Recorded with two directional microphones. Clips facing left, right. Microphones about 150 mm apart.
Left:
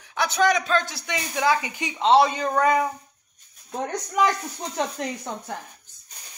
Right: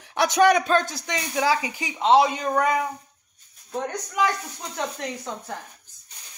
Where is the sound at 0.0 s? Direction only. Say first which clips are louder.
Right 3 dB; 70° right (ahead or behind).